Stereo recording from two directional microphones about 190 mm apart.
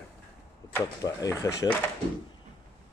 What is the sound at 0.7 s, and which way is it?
Speech, 15° left (ahead or behind).